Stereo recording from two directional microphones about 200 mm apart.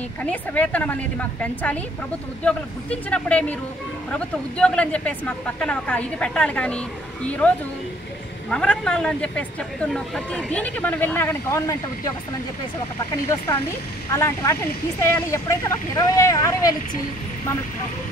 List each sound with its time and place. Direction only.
0.2 s speech: 10° left (ahead or behind)
14.1 s speech: 15° left (ahead or behind)